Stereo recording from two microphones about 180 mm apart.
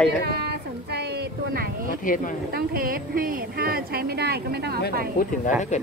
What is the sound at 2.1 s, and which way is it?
Speech, 45° left (ahead or behind).